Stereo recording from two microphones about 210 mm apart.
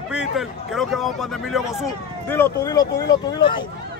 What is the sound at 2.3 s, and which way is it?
Speech, 15° left (ahead or behind).